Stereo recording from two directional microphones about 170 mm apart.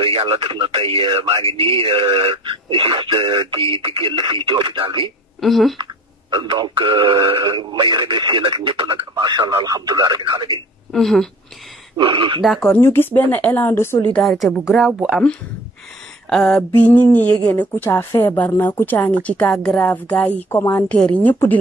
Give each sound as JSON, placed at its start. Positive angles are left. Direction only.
{"t": 0.0, "sound": "speech", "side_deg": -35}
{"t": 5.4, "sound": "a woman's voice", "side_deg": 0}
{"t": 6.3, "sound": "speech", "side_deg": -25}
{"t": 10.9, "sound": "a woman's voice", "side_deg": 0}
{"t": 12.0, "sound": "speech", "side_deg": -30}
{"t": 12.4, "sound": "a woman's voice", "side_deg": 5}
{"t": 14.1, "sound": "a woman's voice", "side_deg": 0}
{"t": 16.3, "sound": "a sound", "side_deg": 5}
{"t": 16.9, "sound": "a woman's voice", "side_deg": 10}